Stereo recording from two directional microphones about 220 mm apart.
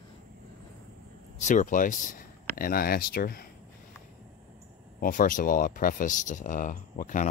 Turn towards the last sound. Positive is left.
turn(degrees=35)  # may be behind; listen again after turning